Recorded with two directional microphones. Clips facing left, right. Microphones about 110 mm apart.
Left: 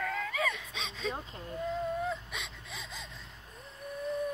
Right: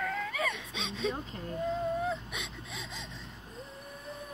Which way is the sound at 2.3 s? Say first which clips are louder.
Right 1 dB; centre (ahead or behind).